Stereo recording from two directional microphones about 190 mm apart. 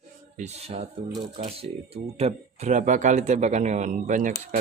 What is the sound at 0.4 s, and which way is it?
Speech, 35° right (ahead or behind).